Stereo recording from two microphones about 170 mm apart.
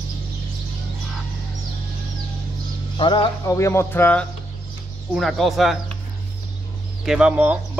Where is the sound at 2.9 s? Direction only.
30° left (ahead or behind).